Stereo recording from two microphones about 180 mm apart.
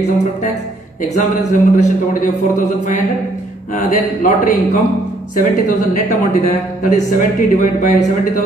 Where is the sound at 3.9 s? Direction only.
45° left (ahead or behind).